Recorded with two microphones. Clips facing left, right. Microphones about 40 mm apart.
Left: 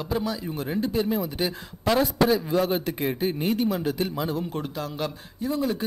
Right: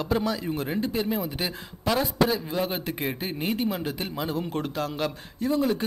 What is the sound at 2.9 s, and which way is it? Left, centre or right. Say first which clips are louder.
A man's voice: left 4 dB; right.